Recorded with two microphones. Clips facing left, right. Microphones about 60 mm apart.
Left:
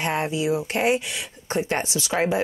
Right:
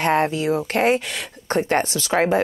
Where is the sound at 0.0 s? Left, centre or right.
Right.